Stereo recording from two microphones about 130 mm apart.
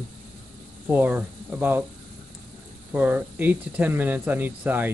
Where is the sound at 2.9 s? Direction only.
15° right (ahead or behind).